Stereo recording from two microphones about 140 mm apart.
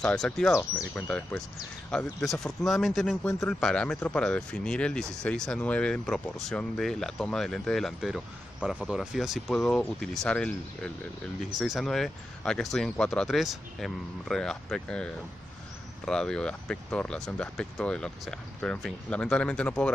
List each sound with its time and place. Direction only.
0.0 s speech: 5° left (ahead or behind)
0.6 s speech: 15° left (ahead or behind)
16.1 s speech: 5° left (ahead or behind)